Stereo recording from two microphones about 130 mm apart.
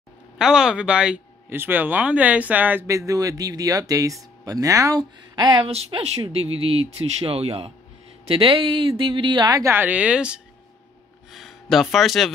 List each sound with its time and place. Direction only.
0.4 s speech: 5° right (ahead or behind); by 5.7 s 35° right (ahead or behind)
5.7 s speech: 50° right (ahead or behind); by 9.7 s 35° right (ahead or behind)
9.7 s speech: 15° right (ahead or behind)